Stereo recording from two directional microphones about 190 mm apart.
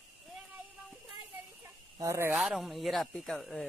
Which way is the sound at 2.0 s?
15° right (ahead or behind).